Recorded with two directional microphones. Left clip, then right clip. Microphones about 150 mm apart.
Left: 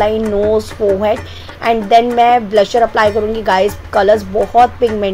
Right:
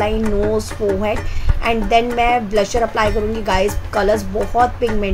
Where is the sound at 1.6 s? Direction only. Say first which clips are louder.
Left 5 dB; 20° left (ahead or behind).